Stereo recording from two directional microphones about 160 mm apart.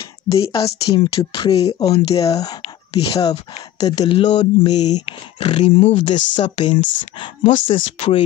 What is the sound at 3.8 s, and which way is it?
Speech, 25° left (ahead or behind).